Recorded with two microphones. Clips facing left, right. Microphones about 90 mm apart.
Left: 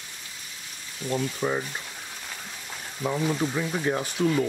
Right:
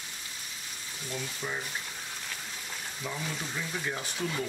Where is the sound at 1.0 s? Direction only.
60° left (ahead or behind).